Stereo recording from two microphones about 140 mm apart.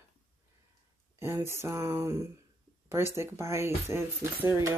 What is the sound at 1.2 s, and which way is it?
Speech, 20° right (ahead or behind).